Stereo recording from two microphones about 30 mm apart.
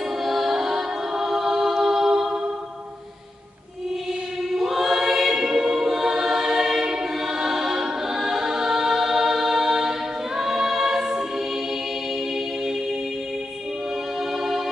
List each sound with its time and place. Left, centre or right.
0.2 s a capella: centre
4.6 s choir: centre